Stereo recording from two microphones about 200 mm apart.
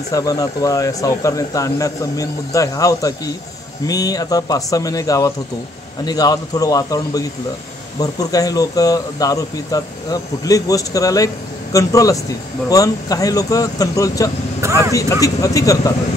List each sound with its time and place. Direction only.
0.1 s speech: 15° left (ahead or behind)
14.6 s speech: 15° right (ahead or behind)
15.0 s speech: 15° left (ahead or behind)